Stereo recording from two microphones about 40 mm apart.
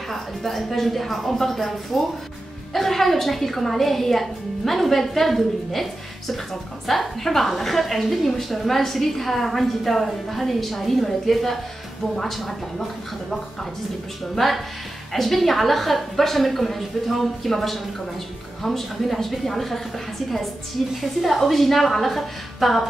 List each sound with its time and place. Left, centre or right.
0.1 s a woman's voice: centre
14.3 s a woman's voice: centre
21.2 s a woman's voice: centre